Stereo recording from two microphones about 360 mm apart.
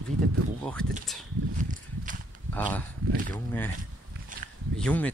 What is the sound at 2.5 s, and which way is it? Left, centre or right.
Speech, centre.